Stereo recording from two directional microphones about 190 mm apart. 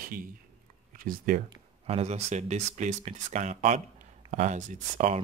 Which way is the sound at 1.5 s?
35° right (ahead or behind).